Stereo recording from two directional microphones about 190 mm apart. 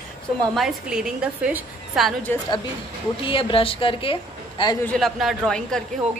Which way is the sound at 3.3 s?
25° left (ahead or behind).